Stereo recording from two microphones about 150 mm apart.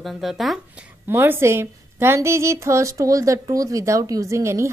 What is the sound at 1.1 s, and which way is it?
A woman's voice, 15° right (ahead or behind).